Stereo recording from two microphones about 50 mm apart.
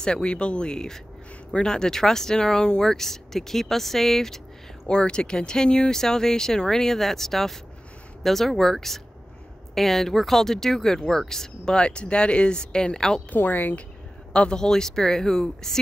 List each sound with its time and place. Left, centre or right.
0.0 s speech: centre
4.8 s speech: centre
13.3 s speech: left
14.3 s speech: left
14.6 s speech: centre